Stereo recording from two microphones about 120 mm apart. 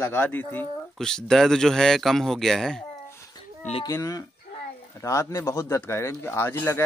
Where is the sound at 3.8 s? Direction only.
25° left (ahead or behind).